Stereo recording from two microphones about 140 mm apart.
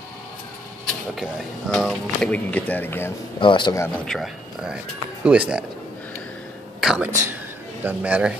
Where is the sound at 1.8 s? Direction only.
5° left (ahead or behind).